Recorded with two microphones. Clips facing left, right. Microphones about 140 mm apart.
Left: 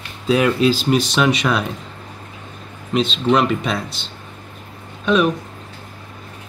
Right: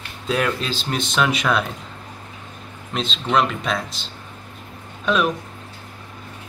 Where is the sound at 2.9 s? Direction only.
5° left (ahead or behind).